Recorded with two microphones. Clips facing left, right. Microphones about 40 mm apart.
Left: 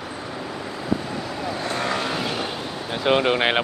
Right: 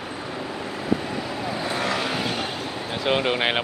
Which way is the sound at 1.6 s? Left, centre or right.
Centre.